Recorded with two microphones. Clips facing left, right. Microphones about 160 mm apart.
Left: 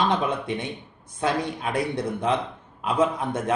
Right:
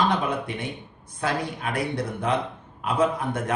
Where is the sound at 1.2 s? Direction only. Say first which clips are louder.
Left 2 dB; 20° left (ahead or behind).